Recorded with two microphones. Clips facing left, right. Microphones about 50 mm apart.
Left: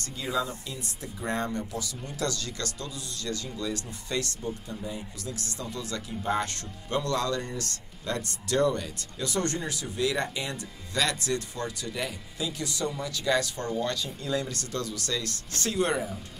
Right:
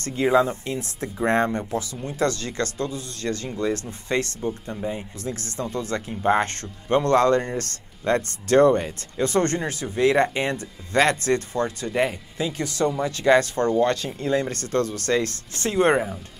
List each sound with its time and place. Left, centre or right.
0.0 s speech: right